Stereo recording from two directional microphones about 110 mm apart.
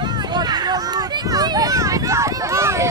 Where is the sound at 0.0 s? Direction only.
40° right (ahead or behind).